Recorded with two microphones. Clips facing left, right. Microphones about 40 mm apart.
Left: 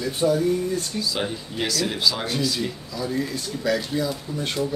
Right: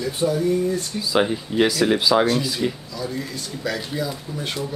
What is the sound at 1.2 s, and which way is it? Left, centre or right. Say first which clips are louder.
Speech: right 7 dB; centre.